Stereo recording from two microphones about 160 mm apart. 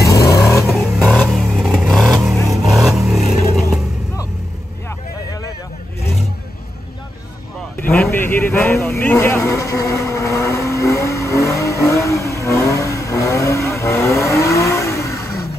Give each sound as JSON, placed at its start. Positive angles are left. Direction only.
{"t": 0.0, "sound": "vehicle", "side_deg": 20}
{"t": 1.3, "sound": "vehicle", "side_deg": -5}
{"t": 8.0, "sound": "insect", "side_deg": 10}